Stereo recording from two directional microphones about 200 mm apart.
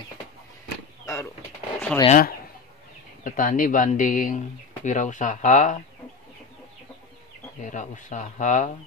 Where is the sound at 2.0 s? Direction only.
40° left (ahead or behind).